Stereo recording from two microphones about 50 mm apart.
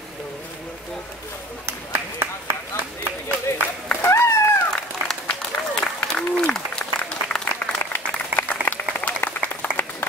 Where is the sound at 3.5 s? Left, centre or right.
Left.